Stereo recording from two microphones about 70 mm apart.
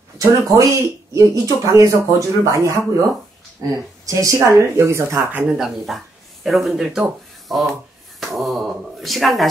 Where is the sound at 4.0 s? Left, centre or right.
Right.